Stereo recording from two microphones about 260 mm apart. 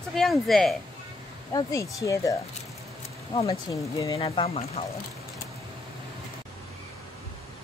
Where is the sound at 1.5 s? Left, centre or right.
Centre.